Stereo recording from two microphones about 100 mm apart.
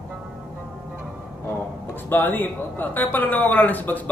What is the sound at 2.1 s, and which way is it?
Speech, 20° left (ahead or behind).